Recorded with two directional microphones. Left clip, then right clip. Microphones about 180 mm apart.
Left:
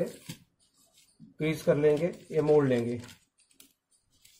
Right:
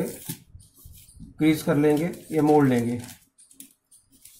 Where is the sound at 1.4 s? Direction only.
35° left (ahead or behind).